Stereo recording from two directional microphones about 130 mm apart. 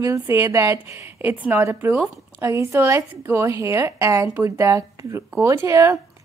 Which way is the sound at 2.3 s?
20° right (ahead or behind).